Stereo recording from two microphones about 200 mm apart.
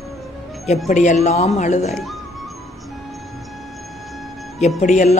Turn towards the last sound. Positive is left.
turn(degrees=35)  # may be behind; listen again after turning